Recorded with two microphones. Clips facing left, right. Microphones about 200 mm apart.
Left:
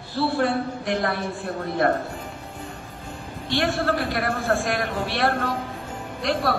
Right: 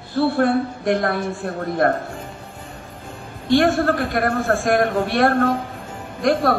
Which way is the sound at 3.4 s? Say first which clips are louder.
Right 7 dB; 50° right (ahead or behind).